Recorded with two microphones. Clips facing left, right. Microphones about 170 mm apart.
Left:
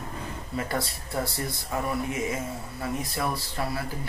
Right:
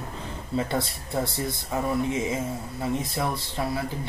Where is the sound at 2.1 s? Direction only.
25° right (ahead or behind).